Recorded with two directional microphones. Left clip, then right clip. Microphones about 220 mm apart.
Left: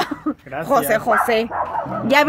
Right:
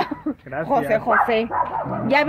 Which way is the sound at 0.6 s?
25° left (ahead or behind).